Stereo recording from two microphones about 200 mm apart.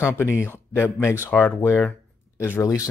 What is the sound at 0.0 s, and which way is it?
Speech, 10° left (ahead or behind).